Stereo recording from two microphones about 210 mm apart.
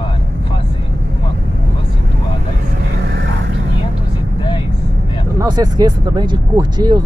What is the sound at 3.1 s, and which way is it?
Vehicle, 55° right (ahead or behind).